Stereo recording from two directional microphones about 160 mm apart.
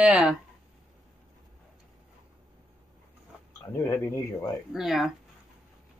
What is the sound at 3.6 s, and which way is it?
Speech, 15° left (ahead or behind).